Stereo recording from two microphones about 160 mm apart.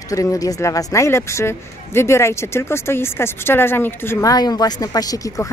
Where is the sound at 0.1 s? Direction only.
20° left (ahead or behind).